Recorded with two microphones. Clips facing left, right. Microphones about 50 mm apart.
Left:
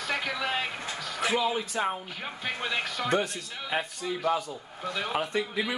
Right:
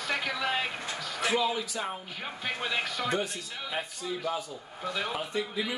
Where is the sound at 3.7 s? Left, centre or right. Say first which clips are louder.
Left 4 dB; left.